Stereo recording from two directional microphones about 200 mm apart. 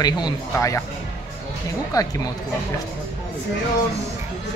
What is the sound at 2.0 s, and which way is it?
Speech, 15° left (ahead or behind).